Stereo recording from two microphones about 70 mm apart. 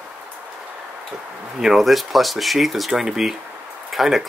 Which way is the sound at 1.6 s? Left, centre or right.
Centre.